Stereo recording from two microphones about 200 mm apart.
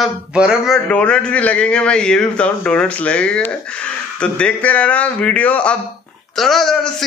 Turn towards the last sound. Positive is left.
turn(degrees=0)  # may be behind; listen again after turning